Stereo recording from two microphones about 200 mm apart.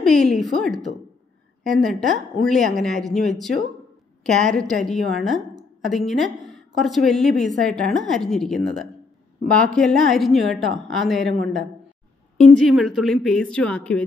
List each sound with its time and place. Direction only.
0.0 s a woman's voice: centre (ahead or behind)